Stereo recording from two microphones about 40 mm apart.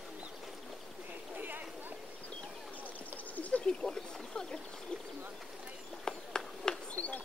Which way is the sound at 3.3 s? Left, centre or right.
Left.